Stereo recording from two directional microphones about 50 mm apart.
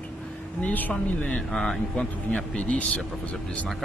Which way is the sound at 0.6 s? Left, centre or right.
Left.